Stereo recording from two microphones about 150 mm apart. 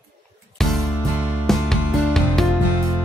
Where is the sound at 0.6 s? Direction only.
Centre (ahead or behind).